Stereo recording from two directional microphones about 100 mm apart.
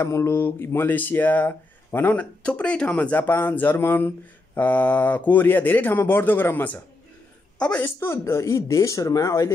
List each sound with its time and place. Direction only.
0.0 s a woman's voice: 30° left (ahead or behind); by 7.8 s 10° left (ahead or behind)
7.8 s speech: 25° left (ahead or behind)